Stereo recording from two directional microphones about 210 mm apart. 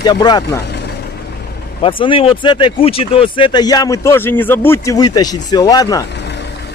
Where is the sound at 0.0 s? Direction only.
20° left (ahead or behind).